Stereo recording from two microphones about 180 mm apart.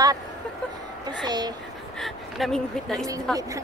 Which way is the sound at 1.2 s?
25° right (ahead or behind).